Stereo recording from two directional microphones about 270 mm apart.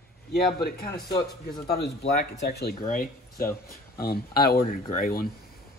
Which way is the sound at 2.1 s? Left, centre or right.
Left.